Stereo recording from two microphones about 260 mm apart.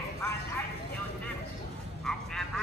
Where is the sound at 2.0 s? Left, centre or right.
Centre.